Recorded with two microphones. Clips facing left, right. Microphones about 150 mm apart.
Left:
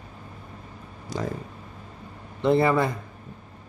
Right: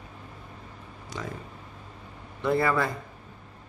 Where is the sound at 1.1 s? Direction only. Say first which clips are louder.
Left 7 dB; 35° left (ahead or behind).